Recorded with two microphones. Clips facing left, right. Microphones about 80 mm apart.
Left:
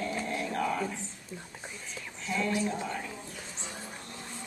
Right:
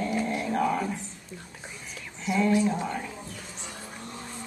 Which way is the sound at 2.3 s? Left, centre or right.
Centre.